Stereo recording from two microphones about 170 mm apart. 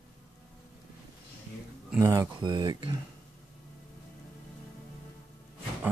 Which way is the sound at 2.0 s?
15° right (ahead or behind).